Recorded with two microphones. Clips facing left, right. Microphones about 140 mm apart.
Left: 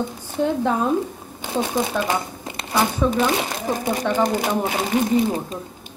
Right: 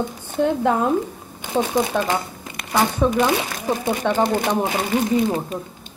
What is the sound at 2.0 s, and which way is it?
Crumpling, 25° left (ahead or behind).